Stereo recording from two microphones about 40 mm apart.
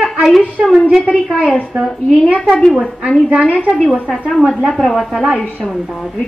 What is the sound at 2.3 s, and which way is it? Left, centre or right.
Speech, left.